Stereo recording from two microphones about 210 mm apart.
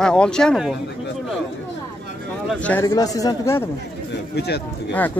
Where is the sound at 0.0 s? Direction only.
5° left (ahead or behind).